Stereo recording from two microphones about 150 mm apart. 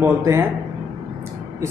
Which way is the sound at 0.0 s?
15° right (ahead or behind).